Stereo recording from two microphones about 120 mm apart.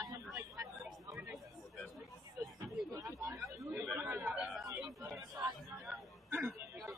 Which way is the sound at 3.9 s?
15° right (ahead or behind).